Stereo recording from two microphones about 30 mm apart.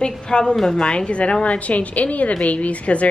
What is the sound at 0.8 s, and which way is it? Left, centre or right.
A woman's voice, left.